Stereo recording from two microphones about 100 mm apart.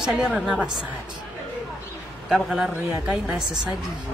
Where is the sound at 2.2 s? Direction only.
5° right (ahead or behind).